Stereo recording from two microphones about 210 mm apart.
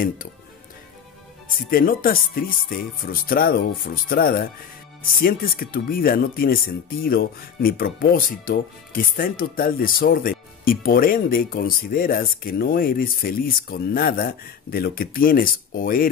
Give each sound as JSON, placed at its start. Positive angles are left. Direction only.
{"t": 1.7, "sound": "speech", "side_deg": 45}